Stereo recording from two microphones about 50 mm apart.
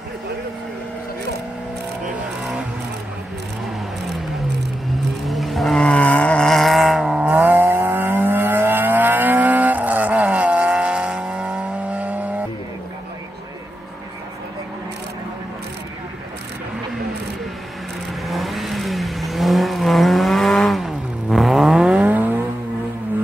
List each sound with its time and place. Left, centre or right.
5.3 s vehicle: centre
5.8 s vehicle: left
6.4 s a sound: centre
7.2 s vehicle: right
18.2 s vehicle: centre
21.8 s vehicle: right
22.1 s vehicle: right